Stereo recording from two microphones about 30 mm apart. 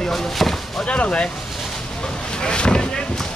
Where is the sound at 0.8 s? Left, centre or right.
Left.